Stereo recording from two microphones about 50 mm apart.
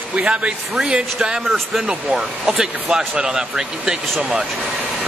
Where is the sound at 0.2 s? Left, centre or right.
Right.